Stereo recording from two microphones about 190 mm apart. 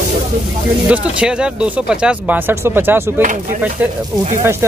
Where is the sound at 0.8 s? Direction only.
5° right (ahead or behind).